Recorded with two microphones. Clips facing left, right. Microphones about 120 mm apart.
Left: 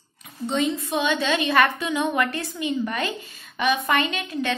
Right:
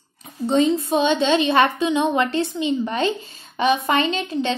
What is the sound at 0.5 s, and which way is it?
A woman's voice, 30° right (ahead or behind).